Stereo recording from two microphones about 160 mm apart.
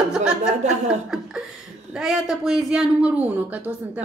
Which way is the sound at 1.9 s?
5° right (ahead or behind).